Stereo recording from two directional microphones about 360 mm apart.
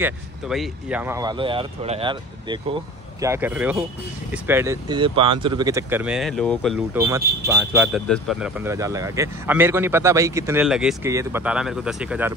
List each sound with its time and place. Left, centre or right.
0.0 s speech: centre